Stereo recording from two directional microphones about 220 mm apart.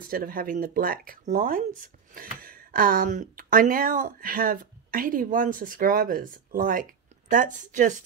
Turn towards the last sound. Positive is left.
turn(degrees=-35)  # may be behind; listen again after turning